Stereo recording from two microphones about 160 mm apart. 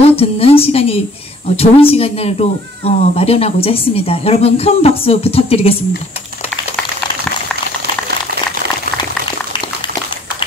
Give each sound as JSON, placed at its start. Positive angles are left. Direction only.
{"t": 0.0, "sound": "speech", "side_deg": 40}